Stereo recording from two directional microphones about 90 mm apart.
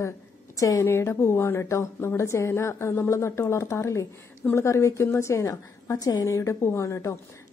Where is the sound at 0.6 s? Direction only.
30° left (ahead or behind).